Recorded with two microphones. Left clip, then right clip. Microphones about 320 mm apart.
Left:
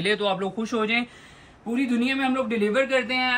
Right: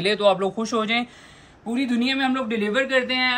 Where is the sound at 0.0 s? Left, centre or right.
Centre.